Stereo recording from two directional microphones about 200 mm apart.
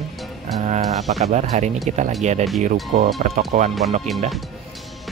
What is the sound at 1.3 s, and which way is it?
Speech, 35° right (ahead or behind).